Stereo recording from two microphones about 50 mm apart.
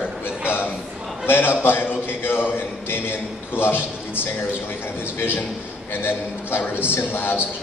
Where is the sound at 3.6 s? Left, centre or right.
Left.